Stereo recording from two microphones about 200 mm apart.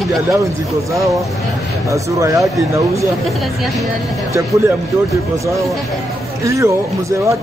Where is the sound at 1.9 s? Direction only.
15° right (ahead or behind).